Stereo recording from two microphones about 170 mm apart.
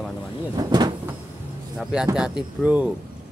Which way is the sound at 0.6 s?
25° right (ahead or behind).